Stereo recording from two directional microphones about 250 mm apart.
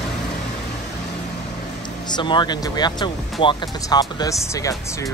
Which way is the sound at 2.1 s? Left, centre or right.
Centre.